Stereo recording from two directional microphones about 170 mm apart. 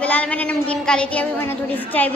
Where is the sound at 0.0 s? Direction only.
10° left (ahead or behind).